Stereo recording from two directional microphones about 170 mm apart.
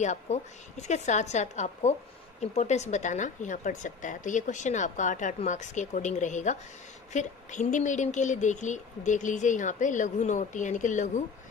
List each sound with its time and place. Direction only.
0.0 s speech: 45° left (ahead or behind)